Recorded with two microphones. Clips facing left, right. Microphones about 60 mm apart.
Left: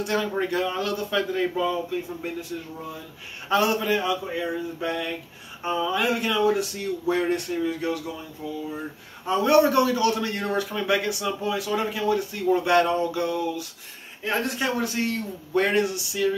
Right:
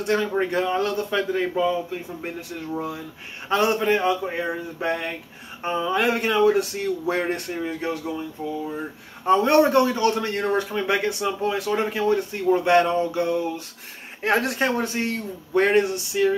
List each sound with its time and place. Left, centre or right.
0.0 s speech: right
2.7 s speech: right
3.4 s a man's voice: right
9.2 s a man's voice: right
12.4 s speech: right
14.2 s speech: right
14.6 s a man's voice: right